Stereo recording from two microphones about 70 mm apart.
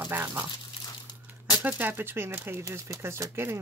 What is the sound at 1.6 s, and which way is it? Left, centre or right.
Speech, right.